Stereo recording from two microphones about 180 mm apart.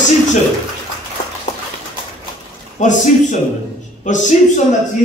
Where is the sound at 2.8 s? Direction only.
40° left (ahead or behind).